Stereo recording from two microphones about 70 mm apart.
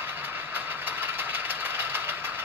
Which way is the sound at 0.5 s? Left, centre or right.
Right.